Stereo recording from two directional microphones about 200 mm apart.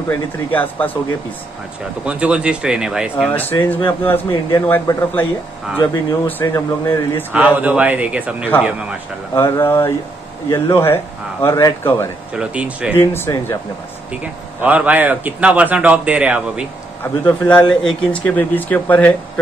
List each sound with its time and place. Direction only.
0.1 s speech: 10° left (ahead or behind)
2.0 s speech: 5° right (ahead or behind)
3.6 s speech: 10° left (ahead or behind)
6.2 s speech: 15° left (ahead or behind)
7.3 s a man's voice: 5° right (ahead or behind)
9.3 s speech: 10° left (ahead or behind)
12.4 s speech: 5° right (ahead or behind)
12.9 s speech: 10° left (ahead or behind)
14.6 s a man's voice: 5° right (ahead or behind)
17.0 s speech: 10° left (ahead or behind)